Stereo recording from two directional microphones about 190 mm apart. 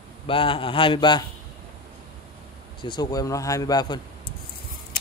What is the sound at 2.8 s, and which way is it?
Speech, 25° left (ahead or behind).